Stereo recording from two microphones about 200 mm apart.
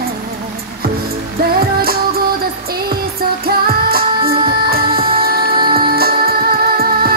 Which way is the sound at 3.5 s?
50° right (ahead or behind).